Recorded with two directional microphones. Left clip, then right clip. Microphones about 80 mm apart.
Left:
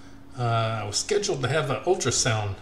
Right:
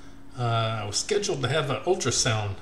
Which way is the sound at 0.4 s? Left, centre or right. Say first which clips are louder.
Left 1 dB; centre.